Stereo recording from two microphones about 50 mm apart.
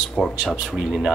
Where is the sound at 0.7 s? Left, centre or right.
Centre.